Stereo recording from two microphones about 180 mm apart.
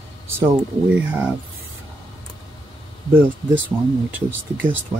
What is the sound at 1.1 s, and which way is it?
Speech, 5° right (ahead or behind).